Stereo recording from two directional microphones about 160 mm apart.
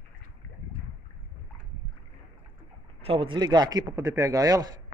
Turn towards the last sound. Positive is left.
turn(degrees=-20)  # may be behind; listen again after turning